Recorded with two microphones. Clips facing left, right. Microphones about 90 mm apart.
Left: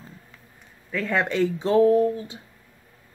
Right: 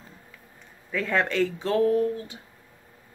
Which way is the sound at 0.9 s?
Centre (ahead or behind).